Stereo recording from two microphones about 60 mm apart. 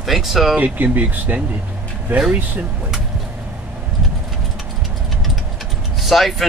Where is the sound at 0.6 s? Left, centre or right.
Right.